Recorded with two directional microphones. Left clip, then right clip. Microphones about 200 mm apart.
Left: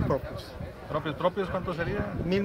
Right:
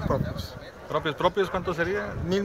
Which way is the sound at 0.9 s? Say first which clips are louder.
Right 4 dB; 45° right (ahead or behind).